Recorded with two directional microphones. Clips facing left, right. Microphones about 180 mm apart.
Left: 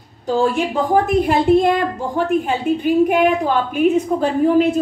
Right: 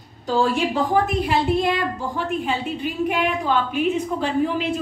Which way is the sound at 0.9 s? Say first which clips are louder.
Left 5 dB; 50° left (ahead or behind).